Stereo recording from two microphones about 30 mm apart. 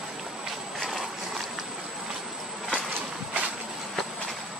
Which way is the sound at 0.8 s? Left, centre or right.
Centre.